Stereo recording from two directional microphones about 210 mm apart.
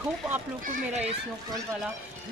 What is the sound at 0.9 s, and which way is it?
Speech, 30° right (ahead or behind).